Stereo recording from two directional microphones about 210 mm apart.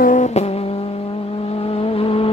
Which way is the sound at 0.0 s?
35° left (ahead or behind).